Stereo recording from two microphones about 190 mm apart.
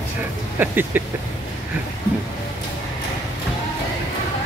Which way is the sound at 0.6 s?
10° right (ahead or behind).